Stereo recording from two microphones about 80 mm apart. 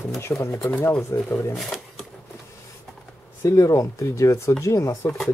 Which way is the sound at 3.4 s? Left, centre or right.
Left.